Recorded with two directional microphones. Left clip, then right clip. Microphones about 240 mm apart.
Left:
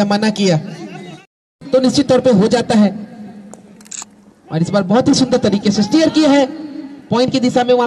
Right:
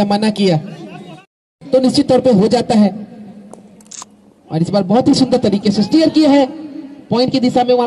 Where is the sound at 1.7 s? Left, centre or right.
Right.